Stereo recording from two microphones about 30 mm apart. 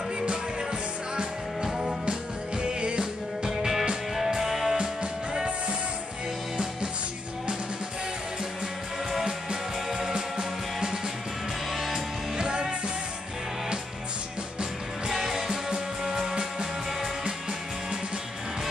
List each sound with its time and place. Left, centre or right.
1.6 s music: centre
2.6 s music: right
3.4 s music: centre
6.5 s music: right
9.2 s music: centre
14.6 s music: centre